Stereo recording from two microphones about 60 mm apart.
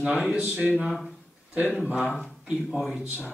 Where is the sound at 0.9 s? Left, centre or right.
Centre.